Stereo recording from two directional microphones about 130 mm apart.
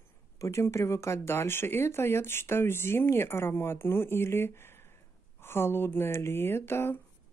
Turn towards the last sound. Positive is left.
turn(degrees=20)  # may be behind; listen again after turning